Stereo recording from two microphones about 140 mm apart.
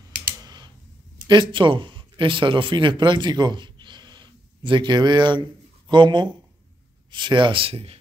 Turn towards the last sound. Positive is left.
turn(degrees=-45)  # may be behind; listen again after turning